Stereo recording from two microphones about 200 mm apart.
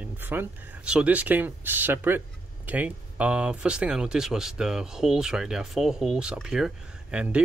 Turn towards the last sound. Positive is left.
turn(degrees=-5)  # may be behind; listen again after turning